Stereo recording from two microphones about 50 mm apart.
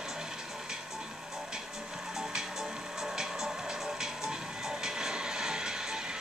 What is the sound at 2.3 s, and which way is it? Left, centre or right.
Music, centre.